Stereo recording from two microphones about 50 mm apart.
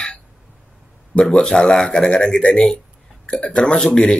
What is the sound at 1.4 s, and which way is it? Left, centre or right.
Speech, centre.